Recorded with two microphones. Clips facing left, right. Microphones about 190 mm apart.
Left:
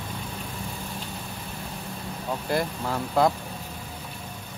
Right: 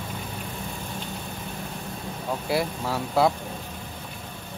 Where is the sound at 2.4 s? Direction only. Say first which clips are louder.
Right 1 dB; 5° right (ahead or behind).